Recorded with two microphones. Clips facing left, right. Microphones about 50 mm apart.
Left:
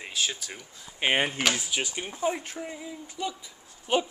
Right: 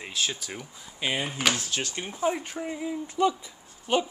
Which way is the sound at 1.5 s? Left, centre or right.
Centre.